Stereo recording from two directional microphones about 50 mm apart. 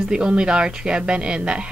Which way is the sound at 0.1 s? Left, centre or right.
Centre.